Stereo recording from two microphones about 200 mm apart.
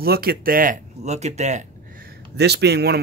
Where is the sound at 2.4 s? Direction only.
55° right (ahead or behind).